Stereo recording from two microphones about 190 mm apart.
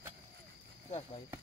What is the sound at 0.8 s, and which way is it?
Speech, 30° left (ahead or behind).